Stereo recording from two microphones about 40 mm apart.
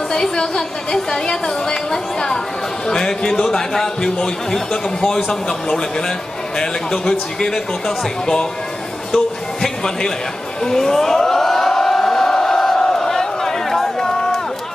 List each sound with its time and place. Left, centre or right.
0.1 s a woman's voice: centre
9.1 s music: centre
10.6 s a sound: centre